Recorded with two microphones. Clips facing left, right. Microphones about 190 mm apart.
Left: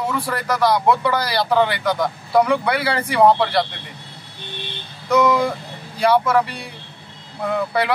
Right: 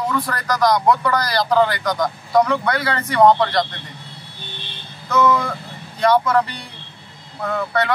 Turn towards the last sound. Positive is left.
turn(degrees=10)  # may be behind; listen again after turning